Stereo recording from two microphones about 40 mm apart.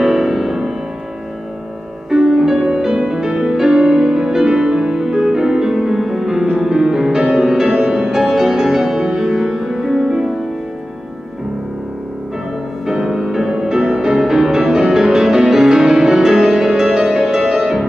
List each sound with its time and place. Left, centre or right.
0.0 s music: centre
2.0 s music: centre
12.8 s music: centre